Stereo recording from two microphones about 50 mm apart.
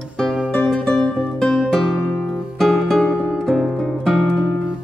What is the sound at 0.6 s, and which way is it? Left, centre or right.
Music, centre.